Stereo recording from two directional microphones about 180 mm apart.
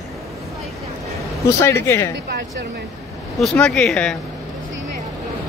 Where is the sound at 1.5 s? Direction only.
15° left (ahead or behind).